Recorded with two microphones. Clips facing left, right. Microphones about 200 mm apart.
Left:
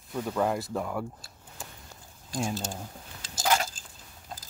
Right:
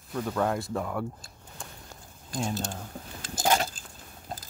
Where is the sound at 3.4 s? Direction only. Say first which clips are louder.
Right 1 dB; 30° right (ahead or behind).